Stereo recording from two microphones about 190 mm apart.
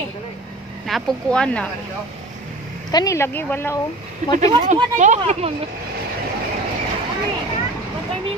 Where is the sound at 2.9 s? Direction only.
20° left (ahead or behind).